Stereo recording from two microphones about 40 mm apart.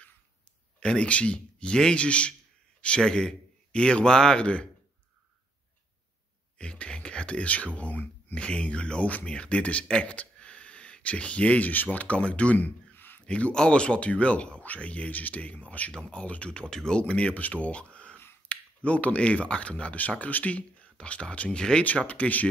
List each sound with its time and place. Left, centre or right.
0.7 s a man's voice: left
6.6 s a man's voice: left
12.9 s a sound: left
13.2 s a man's voice: left
15.9 s a man's voice: left
17.1 s speech: left
20.0 s speech: left
21.8 s speech: left